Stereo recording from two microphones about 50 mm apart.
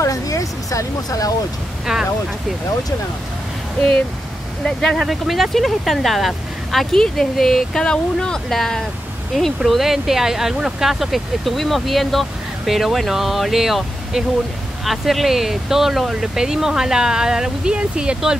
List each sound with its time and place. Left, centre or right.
0.0 s a sound: left
1.9 s speech: centre
4.6 s speech: centre
6.9 s speech: centre
9.6 s speech: centre